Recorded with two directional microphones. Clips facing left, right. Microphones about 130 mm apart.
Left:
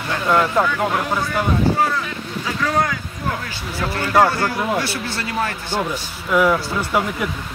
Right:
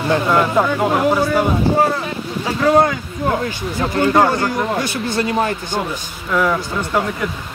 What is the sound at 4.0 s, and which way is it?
Speech, 20° right (ahead or behind).